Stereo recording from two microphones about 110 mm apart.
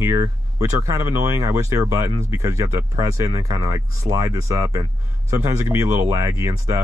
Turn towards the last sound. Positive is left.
turn(degrees=-30)  # may be behind; listen again after turning